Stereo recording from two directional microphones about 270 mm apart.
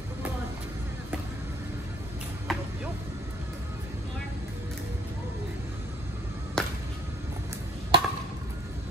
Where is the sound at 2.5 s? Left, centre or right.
Centre.